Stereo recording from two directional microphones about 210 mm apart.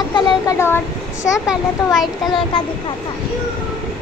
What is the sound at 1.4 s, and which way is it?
Speech, centre (ahead or behind).